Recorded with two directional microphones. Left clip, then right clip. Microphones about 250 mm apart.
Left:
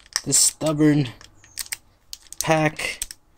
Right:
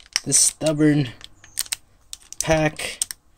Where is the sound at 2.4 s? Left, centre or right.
Centre.